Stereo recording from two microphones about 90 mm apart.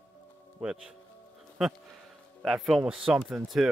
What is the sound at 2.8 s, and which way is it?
Speech, 10° right (ahead or behind).